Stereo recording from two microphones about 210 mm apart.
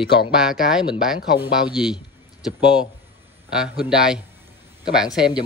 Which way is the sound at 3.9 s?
5° right (ahead or behind).